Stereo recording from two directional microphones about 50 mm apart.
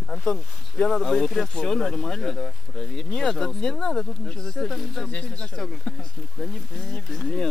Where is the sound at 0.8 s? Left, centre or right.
Centre.